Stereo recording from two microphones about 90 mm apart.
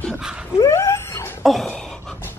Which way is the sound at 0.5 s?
35° left (ahead or behind).